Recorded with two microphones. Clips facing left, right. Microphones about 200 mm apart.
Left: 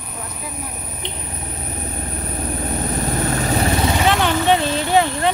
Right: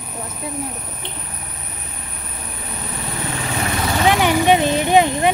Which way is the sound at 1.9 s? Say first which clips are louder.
Left 9 dB; 40° left (ahead or behind).